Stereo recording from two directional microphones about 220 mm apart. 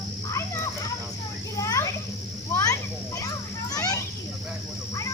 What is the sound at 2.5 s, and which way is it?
Children playing, 10° left (ahead or behind).